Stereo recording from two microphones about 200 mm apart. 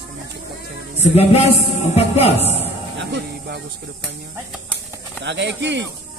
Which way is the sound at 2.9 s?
55° right (ahead or behind).